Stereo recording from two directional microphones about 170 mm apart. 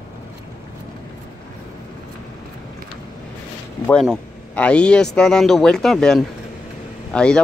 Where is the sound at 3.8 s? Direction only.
Centre (ahead or behind).